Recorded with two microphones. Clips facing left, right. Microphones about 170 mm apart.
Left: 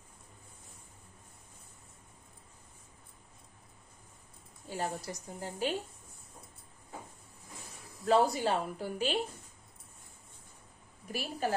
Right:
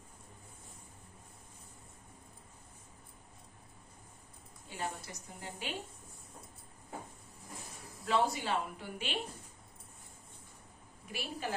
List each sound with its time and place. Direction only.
4.6 s a woman's voice: 40° left (ahead or behind)
8.0 s a woman's voice: 40° left (ahead or behind)
11.1 s a woman's voice: 40° left (ahead or behind)